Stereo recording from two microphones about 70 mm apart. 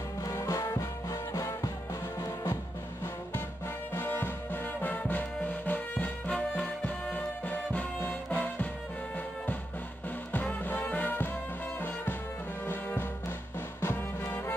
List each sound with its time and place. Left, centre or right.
0.2 s music: left
3.9 s music: left
10.3 s music: left
13.7 s music: left